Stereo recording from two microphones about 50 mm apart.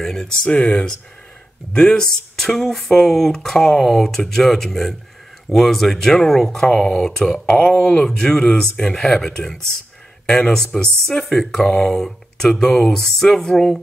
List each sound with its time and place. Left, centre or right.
0.0 s speech: centre
0.4 s speech: left; by 13.7 s centre